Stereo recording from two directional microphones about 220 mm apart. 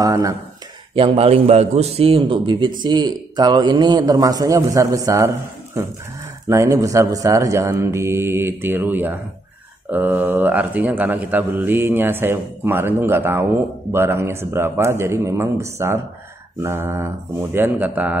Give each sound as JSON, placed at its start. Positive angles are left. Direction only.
{"t": 0.0, "sound": "a man's voice", "side_deg": -15}
{"t": 0.9, "sound": "a man's voice", "side_deg": -25}
{"t": 6.4, "sound": "a man's voice", "side_deg": -15}